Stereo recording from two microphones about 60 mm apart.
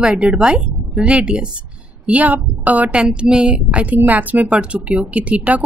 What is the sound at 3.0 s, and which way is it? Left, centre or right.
A woman's voice, centre.